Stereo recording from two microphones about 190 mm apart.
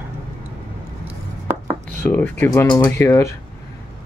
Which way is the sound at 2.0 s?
10° left (ahead or behind).